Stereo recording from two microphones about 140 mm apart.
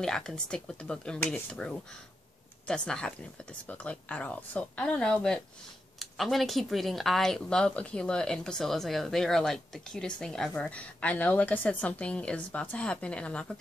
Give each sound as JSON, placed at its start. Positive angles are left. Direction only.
{"t": 0.0, "sound": "a woman's voice", "side_deg": 5}